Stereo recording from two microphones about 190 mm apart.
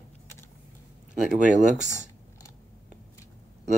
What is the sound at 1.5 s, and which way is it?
Speech, 40° right (ahead or behind).